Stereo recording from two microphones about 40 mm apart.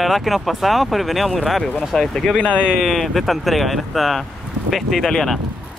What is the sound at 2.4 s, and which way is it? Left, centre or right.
Speech, left.